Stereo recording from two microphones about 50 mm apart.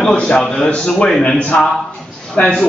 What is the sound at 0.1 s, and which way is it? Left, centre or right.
A man's voice, centre.